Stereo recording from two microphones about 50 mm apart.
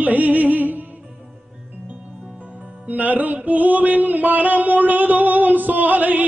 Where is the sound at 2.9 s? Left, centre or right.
Right.